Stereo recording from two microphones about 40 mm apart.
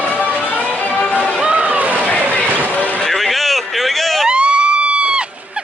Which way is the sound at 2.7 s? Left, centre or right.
Left.